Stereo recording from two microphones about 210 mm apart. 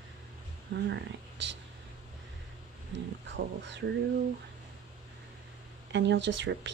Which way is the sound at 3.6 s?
55° right (ahead or behind).